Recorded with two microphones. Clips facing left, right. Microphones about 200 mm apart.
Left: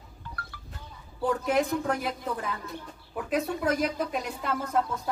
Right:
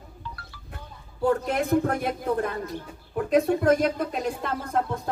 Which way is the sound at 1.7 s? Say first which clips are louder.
Right 5 dB; 55° right (ahead or behind).